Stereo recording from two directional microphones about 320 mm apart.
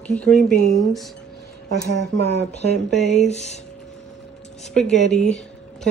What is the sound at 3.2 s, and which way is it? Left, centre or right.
Speech, left.